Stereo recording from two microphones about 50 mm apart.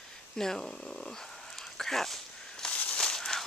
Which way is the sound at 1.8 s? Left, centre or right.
Centre.